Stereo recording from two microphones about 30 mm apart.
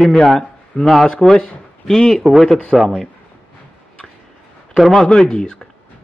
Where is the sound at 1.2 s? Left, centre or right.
Centre.